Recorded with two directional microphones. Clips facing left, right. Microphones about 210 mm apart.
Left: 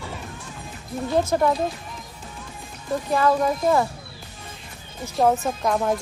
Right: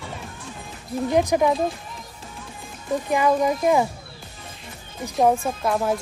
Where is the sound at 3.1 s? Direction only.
15° right (ahead or behind).